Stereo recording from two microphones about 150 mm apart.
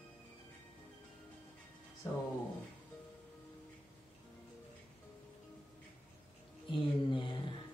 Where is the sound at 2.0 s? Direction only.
20° left (ahead or behind).